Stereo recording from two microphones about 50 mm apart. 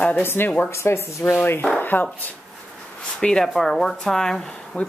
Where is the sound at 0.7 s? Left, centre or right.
Left.